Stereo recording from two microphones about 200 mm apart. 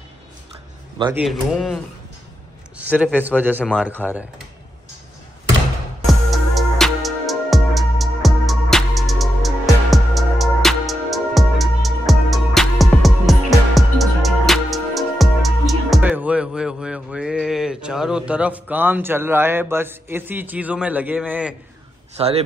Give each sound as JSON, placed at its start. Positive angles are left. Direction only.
{"t": 1.1, "sound": "speech", "side_deg": 0}
{"t": 2.8, "sound": "a man's voice", "side_deg": -10}
{"t": 6.0, "sound": "music", "side_deg": 0}
{"t": 21.3, "sound": "speech", "side_deg": -5}
{"t": 22.1, "sound": "speech", "side_deg": -30}